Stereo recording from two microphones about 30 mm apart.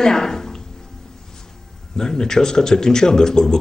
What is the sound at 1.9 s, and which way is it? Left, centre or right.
A woman's voice, left.